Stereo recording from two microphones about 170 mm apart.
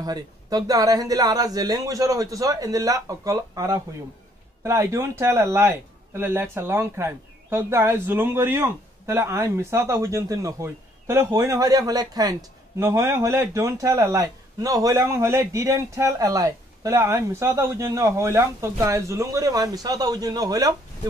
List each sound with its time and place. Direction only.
0.0 s a man's voice: 25° right (ahead or behind)